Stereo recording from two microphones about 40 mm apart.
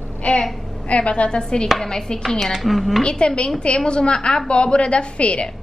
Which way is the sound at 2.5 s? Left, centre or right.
Centre.